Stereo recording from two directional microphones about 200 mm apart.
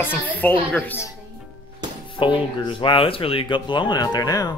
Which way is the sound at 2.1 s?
25° left (ahead or behind).